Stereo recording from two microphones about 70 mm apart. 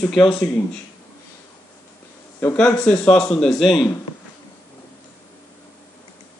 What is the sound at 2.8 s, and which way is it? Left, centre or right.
A man's voice, centre.